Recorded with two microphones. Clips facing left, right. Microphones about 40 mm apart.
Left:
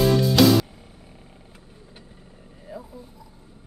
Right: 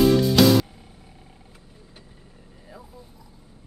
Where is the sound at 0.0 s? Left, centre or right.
Centre.